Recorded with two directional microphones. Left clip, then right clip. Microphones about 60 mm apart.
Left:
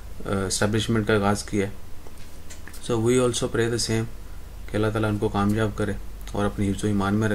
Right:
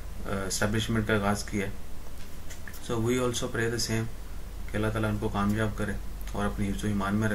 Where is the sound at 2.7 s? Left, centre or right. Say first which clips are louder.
Left 7 dB; left.